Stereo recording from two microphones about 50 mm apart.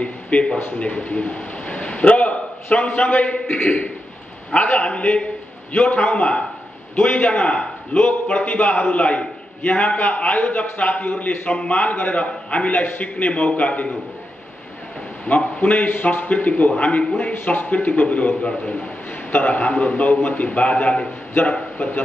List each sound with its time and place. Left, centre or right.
0.0 s a sound: left
0.7 s a man's voice: left
15.2 s a man's voice: left